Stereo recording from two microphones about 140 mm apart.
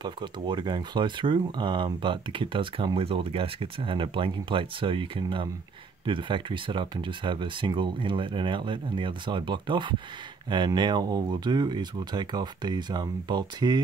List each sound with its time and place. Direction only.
0.0 s speech: 35° right (ahead or behind)